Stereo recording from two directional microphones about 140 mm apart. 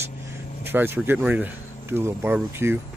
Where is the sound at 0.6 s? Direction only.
15° right (ahead or behind).